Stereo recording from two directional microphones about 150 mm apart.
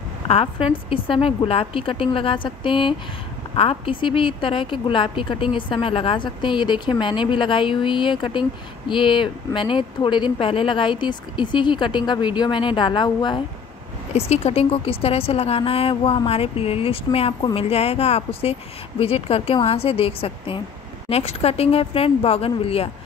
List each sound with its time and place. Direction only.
0.3 s a woman's voice: 40° left (ahead or behind)
14.1 s a woman's voice: 45° left (ahead or behind)